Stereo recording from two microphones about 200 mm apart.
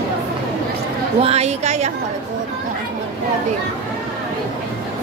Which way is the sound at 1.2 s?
30° right (ahead or behind).